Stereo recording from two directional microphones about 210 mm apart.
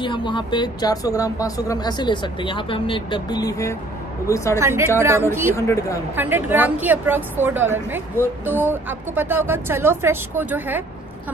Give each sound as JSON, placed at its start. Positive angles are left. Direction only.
{"t": 0.0, "sound": "speech", "side_deg": 20}
{"t": 4.6, "sound": "a woman's voice", "side_deg": -10}
{"t": 5.6, "sound": "a woman's voice", "side_deg": 15}
{"t": 6.1, "sound": "a woman's voice", "side_deg": -10}